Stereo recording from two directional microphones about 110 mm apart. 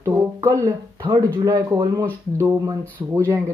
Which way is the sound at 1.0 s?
40° right (ahead or behind).